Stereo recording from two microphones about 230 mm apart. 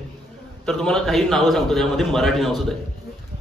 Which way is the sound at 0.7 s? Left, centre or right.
Centre.